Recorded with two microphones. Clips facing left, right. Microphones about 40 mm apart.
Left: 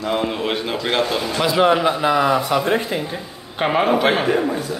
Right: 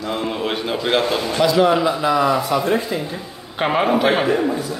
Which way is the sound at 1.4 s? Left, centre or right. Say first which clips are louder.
Right 1 dB; centre.